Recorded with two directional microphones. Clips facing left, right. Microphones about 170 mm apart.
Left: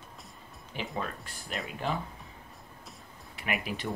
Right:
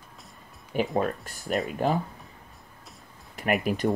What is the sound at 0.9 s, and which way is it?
Speech, 45° right (ahead or behind).